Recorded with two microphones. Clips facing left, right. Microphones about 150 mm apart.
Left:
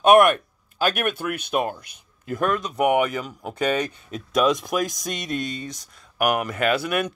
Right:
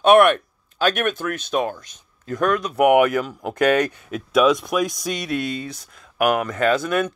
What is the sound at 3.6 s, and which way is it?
Speech, 65° right (ahead or behind).